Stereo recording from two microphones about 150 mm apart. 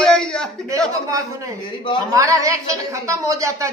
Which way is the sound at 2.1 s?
20° right (ahead or behind).